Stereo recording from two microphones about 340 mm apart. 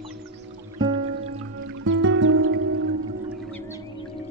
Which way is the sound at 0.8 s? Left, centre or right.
Centre.